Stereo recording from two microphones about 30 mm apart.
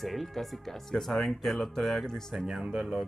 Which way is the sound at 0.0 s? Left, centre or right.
Centre.